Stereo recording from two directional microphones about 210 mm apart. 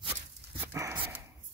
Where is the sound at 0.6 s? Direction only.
10° right (ahead or behind).